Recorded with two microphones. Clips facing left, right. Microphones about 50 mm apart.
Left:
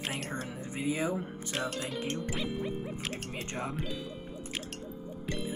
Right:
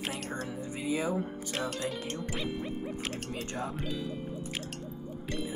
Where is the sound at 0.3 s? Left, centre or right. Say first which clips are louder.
Right 1 dB; left.